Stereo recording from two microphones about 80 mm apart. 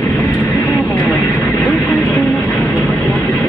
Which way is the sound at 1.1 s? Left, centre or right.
Left.